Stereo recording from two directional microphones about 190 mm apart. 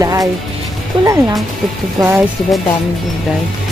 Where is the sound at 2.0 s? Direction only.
20° right (ahead or behind).